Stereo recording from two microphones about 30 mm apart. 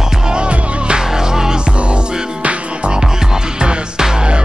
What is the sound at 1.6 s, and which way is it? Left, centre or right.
Music, right.